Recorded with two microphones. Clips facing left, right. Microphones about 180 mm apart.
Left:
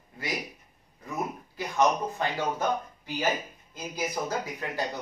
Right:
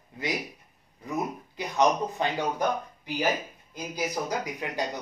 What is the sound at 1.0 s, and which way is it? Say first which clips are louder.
A man's voice: right 2 dB; 20° right (ahead or behind).